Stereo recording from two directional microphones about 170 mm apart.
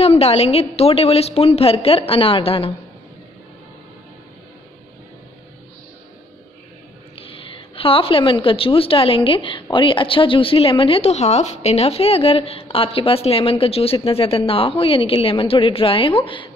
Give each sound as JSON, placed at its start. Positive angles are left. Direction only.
{"t": 0.0, "sound": "a woman's voice", "side_deg": 35}
{"t": 7.2, "sound": "a woman's voice", "side_deg": 30}